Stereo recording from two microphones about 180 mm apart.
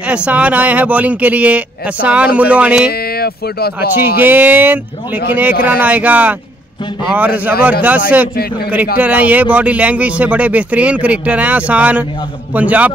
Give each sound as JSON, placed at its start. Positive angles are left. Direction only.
{"t": 0.0, "sound": "speech", "side_deg": -5}
{"t": 2.9, "sound": "speech", "side_deg": 60}
{"t": 4.2, "sound": "speech", "side_deg": -10}
{"t": 8.9, "sound": "speech", "side_deg": -5}